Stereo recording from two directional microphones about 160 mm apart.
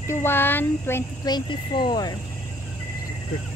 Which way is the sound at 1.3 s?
30° left (ahead or behind).